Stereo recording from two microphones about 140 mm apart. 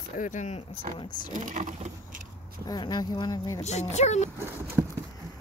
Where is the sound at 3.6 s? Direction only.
55° left (ahead or behind).